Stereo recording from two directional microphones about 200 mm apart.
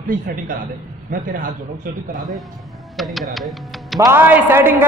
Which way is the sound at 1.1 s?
45° right (ahead or behind).